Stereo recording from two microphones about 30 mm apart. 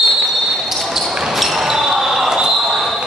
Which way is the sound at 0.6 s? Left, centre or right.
Centre.